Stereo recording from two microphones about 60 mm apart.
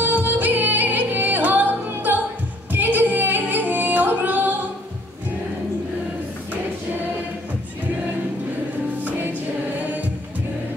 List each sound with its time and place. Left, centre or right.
0.0 s music: right